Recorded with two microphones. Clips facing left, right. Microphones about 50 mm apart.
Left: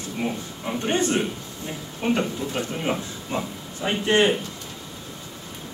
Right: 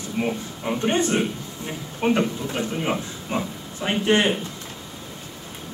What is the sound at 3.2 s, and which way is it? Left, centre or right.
Speech, right.